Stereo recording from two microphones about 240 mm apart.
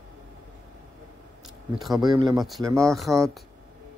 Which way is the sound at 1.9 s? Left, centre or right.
Centre.